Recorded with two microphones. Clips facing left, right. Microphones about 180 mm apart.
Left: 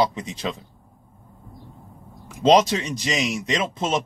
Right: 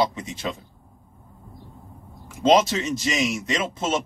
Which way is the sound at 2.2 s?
15° left (ahead or behind).